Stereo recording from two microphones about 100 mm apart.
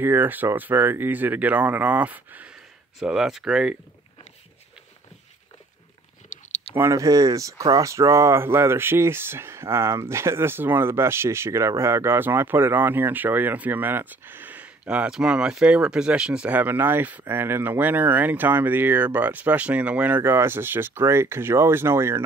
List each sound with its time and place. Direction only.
0.0 s speech: 20° right (ahead or behind)
3.0 s speech: 5° right (ahead or behind)
6.7 s speech: 25° right (ahead or behind)